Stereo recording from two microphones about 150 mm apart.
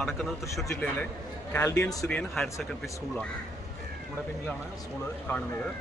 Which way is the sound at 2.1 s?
10° left (ahead or behind).